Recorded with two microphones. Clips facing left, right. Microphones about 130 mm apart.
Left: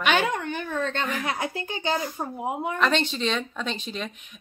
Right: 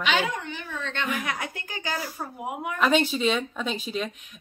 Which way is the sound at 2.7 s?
10° right (ahead or behind).